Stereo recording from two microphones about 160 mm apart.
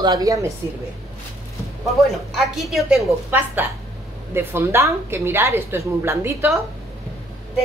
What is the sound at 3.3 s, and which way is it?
A woman's voice, 10° right (ahead or behind).